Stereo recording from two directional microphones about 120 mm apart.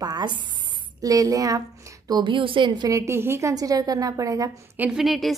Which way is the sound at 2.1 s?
40° right (ahead or behind).